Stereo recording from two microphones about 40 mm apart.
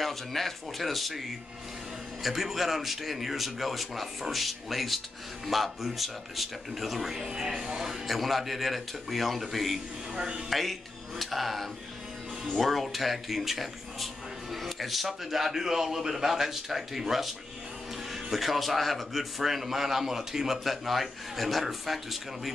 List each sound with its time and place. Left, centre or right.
0.0 s speech: centre
2.2 s speech: centre
10.1 s speech: right
10.5 s a man's voice: centre